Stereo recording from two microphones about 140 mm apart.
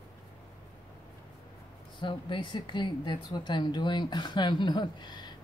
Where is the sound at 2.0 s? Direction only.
35° left (ahead or behind).